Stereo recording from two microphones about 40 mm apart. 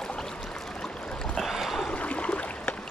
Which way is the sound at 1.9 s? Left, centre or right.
Left.